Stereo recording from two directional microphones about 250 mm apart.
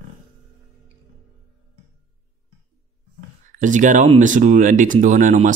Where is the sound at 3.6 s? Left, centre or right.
Right.